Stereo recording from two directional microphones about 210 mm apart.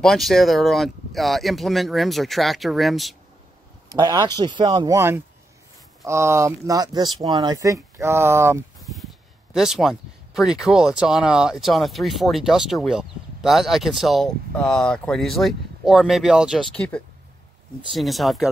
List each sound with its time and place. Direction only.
0.0 s speech: centre (ahead or behind)
3.9 s speech: 20° right (ahead or behind)
8.8 s speech: centre (ahead or behind)